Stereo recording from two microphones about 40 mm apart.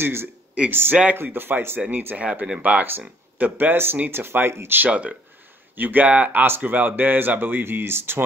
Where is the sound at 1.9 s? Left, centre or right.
Right.